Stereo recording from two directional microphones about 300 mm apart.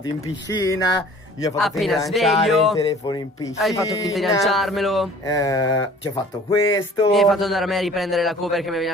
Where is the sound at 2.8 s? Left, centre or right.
Centre.